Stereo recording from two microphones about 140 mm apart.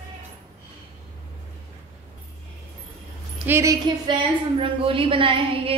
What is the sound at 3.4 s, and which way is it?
Speech, 20° right (ahead or behind).